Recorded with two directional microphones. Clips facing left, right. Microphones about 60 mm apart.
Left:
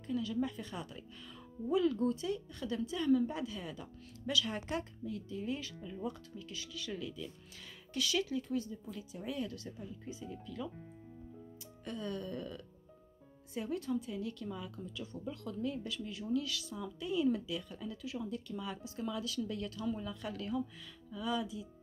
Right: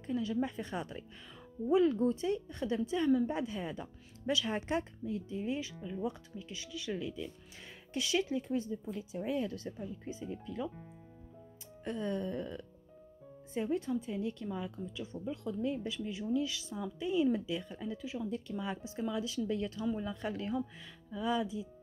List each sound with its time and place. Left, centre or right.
0.0 s speech: right
11.8 s speech: right
18.3 s speech: right